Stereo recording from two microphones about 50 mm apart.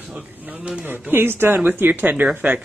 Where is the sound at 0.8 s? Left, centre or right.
Right.